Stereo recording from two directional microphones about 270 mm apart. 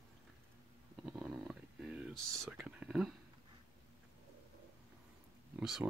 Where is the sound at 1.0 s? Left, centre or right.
Centre.